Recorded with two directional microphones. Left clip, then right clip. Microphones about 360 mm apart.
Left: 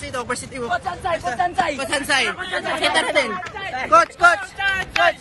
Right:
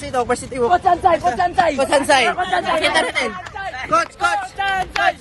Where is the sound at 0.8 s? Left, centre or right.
Centre.